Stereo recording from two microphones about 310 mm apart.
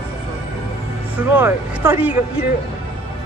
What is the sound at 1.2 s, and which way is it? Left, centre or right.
Speech, centre.